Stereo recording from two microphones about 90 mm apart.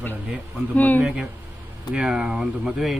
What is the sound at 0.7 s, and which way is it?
Speech, 20° left (ahead or behind).